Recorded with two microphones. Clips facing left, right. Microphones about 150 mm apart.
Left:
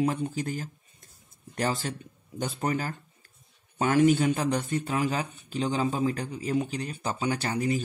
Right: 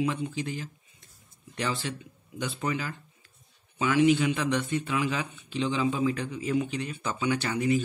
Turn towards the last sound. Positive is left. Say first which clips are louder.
# right 1 dB
turn(degrees=40)  # may be behind; listen again after turning